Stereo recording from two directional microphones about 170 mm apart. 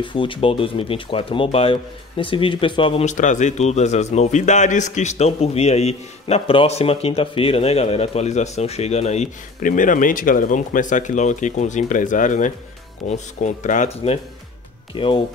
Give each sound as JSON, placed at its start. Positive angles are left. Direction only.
{"t": 0.0, "sound": "speech", "side_deg": 30}